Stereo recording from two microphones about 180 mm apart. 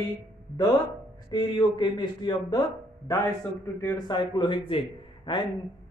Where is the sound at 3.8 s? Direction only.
15° left (ahead or behind).